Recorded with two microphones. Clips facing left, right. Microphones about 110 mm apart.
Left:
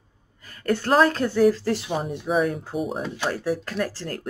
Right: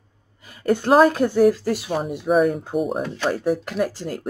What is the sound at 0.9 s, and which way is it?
Speech, 10° right (ahead or behind).